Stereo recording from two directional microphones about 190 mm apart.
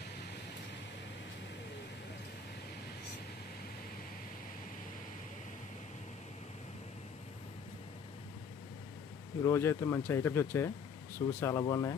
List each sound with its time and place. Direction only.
9.4 s speech: 15° left (ahead or behind)